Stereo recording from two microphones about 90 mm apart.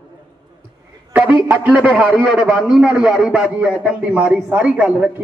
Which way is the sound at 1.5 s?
15° right (ahead or behind).